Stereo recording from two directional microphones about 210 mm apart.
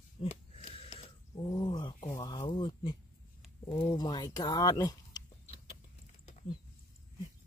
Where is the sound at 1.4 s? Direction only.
15° left (ahead or behind).